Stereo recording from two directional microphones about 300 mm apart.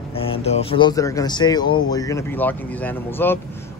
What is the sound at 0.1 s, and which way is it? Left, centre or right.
Speech, centre.